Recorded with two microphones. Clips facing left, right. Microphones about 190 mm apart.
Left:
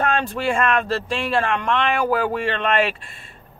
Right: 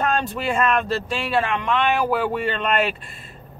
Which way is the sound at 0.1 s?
Centre (ahead or behind).